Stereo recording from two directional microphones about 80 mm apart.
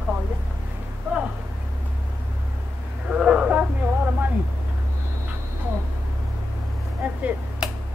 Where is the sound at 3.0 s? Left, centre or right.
Centre.